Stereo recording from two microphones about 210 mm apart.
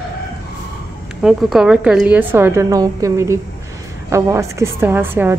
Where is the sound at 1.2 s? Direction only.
5° right (ahead or behind).